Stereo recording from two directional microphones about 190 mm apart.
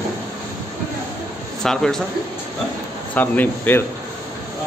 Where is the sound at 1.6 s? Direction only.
Centre (ahead or behind).